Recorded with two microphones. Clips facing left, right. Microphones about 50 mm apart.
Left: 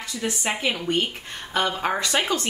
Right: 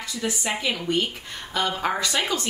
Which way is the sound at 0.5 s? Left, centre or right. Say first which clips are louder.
Left 2 dB; left.